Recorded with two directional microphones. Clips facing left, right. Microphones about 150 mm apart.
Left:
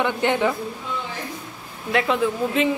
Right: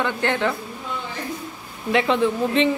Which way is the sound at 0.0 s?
15° left (ahead or behind).